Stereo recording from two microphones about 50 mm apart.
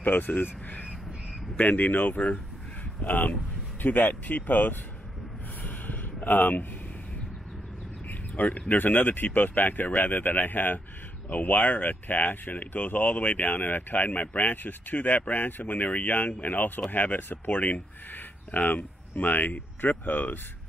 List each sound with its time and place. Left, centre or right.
0.0 s speech: left
5.6 s a sound: left
8.1 s speech: left